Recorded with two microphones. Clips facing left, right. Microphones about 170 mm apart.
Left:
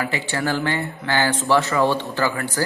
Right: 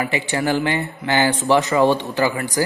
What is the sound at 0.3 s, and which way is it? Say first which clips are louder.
Speech: right 3 dB; 15° right (ahead or behind).